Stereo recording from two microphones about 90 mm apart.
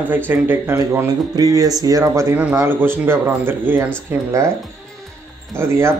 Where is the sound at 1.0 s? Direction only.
45° right (ahead or behind).